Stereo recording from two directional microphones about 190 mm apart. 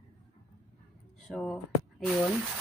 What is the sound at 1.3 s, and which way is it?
Speech, 5° left (ahead or behind).